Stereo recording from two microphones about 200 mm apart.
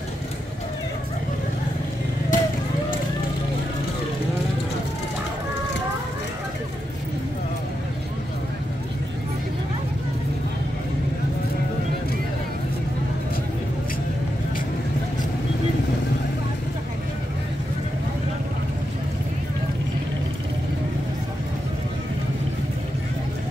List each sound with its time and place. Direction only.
2.3 s vehicle: 40° left (ahead or behind)